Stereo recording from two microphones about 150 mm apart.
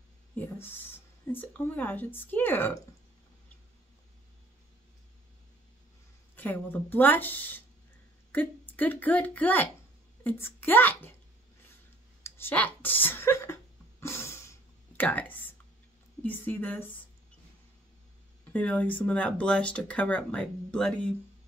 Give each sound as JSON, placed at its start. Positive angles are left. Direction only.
{"t": 0.4, "sound": "speech", "side_deg": 15}
{"t": 6.3, "sound": "a woman's voice", "side_deg": 15}
{"t": 12.2, "sound": "a sound", "side_deg": 15}
{"t": 15.0, "sound": "speech", "side_deg": 10}
{"t": 18.4, "sound": "speech", "side_deg": 10}